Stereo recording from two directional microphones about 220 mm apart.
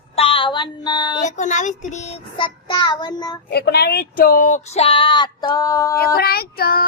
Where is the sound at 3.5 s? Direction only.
45° left (ahead or behind); by 6.0 s 15° left (ahead or behind).